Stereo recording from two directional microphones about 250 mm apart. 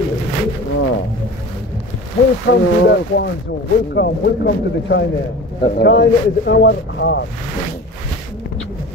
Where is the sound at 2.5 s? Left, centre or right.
Left.